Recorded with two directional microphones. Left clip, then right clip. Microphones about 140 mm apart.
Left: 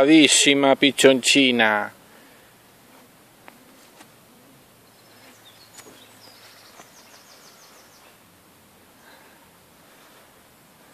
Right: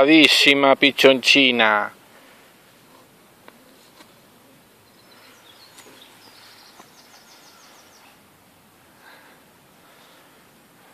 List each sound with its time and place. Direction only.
0.0 s speech: 20° left (ahead or behind)